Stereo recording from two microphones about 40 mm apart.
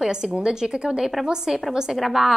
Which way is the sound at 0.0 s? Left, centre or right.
Centre.